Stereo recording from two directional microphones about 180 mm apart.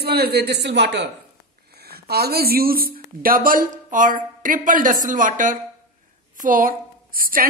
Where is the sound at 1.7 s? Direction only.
60° right (ahead or behind).